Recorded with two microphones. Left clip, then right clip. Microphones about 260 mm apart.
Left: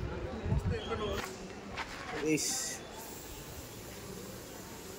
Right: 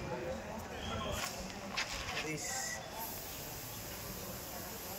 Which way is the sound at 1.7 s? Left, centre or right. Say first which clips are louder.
Right 1 dB; centre.